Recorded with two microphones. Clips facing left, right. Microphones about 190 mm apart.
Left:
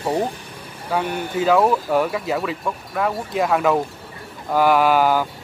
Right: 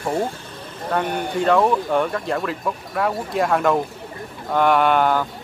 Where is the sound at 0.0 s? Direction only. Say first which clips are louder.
Left 1 dB; 20° left (ahead or behind).